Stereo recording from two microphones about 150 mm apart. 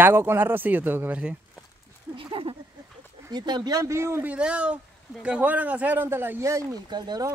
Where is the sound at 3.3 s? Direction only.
30° right (ahead or behind).